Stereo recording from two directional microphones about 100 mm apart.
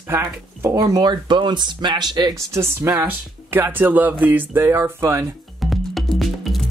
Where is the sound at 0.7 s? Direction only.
35° right (ahead or behind).